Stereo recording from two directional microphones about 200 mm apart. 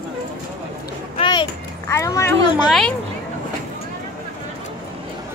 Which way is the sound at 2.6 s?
Centre (ahead or behind).